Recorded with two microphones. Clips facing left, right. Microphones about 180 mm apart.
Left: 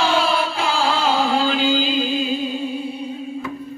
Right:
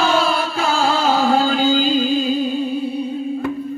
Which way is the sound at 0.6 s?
45° right (ahead or behind).